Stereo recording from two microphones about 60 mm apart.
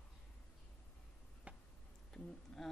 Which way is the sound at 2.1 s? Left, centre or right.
Centre.